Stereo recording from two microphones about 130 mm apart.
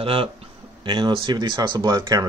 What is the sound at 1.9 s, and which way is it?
Speech, 20° right (ahead or behind).